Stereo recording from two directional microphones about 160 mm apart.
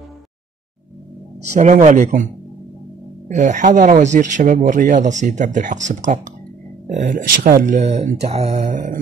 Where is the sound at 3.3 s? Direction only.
50° right (ahead or behind).